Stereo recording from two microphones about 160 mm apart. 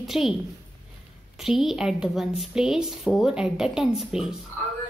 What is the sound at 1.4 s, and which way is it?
A woman's voice, centre (ahead or behind).